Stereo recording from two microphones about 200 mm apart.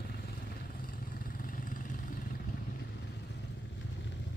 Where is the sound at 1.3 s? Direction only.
45° left (ahead or behind).